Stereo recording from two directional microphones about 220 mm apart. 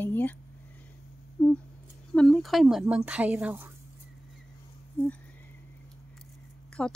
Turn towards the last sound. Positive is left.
turn(degrees=5)  # may be behind; listen again after turning